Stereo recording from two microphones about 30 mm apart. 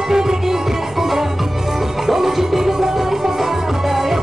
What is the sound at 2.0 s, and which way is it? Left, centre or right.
Music, centre.